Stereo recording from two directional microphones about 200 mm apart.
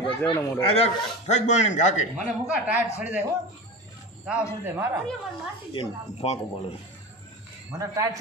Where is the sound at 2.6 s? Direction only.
5° right (ahead or behind).